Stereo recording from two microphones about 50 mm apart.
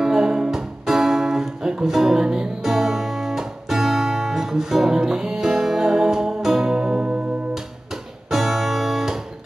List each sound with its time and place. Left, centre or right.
0.0 s music: centre
8.3 s music: centre